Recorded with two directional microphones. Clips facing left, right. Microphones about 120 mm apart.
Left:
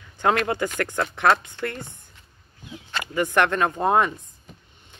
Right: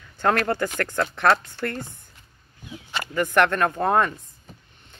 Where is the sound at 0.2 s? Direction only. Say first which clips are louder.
Even; 20° left (ahead or behind).